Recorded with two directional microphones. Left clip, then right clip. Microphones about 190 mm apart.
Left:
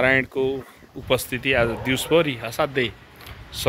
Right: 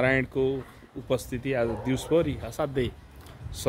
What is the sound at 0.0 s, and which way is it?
Speech, 5° right (ahead or behind).